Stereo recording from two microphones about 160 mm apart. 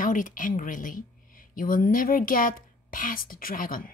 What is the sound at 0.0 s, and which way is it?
Speech, 55° left (ahead or behind).